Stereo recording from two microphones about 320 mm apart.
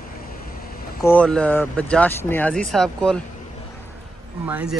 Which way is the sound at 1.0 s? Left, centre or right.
Centre.